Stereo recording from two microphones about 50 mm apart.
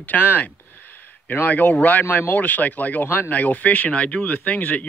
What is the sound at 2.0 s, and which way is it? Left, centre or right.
Speech, left.